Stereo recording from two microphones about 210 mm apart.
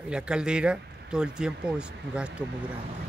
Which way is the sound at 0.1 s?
5° right (ahead or behind).